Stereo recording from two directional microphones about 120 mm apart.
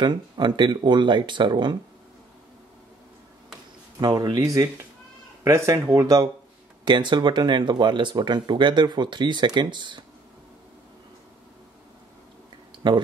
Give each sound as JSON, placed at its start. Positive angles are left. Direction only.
{"t": 0.0, "sound": "speech", "side_deg": -40}
{"t": 4.0, "sound": "speech", "side_deg": -35}
{"t": 5.4, "sound": "speech", "side_deg": -25}